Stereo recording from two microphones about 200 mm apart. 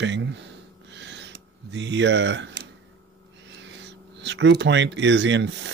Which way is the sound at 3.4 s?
65° right (ahead or behind).